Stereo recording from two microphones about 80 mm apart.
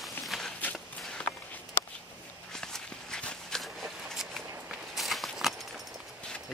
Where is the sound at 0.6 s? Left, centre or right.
Centre.